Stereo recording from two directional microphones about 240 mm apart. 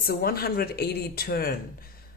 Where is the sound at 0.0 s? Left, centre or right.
Left.